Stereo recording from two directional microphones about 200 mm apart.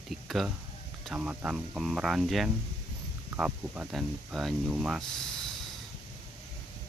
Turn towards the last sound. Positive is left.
turn(degrees=0)  # may be behind; listen again after turning